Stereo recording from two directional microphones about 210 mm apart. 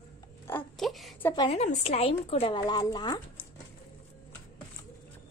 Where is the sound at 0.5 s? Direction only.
5° left (ahead or behind).